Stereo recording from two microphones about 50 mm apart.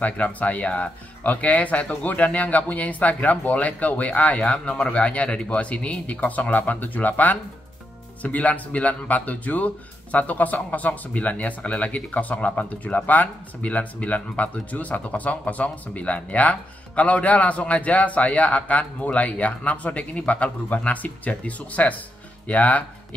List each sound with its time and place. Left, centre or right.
0.0 s speech: left